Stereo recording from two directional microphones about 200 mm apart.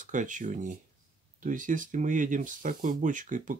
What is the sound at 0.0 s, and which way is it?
Speech, 40° right (ahead or behind).